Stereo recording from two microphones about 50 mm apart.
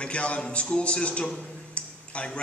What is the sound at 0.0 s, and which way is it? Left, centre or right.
A man's voice, left.